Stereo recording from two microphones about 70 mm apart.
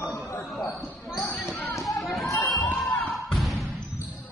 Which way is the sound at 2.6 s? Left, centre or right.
Left.